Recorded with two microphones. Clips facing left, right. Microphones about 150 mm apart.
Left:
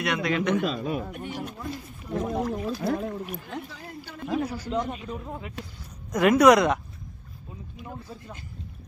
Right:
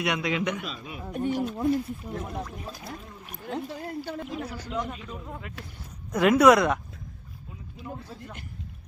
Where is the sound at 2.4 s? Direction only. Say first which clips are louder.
Left 11 dB; 85° left.